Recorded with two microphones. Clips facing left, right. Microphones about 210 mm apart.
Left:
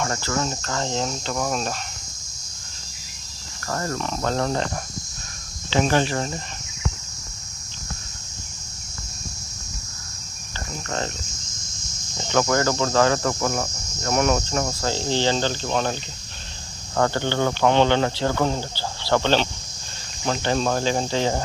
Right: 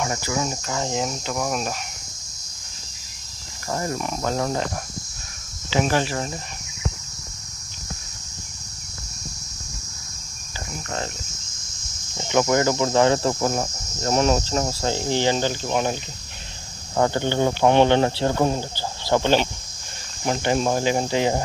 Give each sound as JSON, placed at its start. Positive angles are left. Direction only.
{"t": 0.0, "sound": "speech", "side_deg": -10}
{"t": 3.6, "sound": "speech", "side_deg": -15}
{"t": 5.7, "sound": "speech", "side_deg": -10}
{"t": 12.2, "sound": "speech", "side_deg": -15}